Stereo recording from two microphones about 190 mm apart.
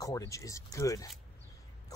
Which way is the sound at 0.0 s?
20° left (ahead or behind).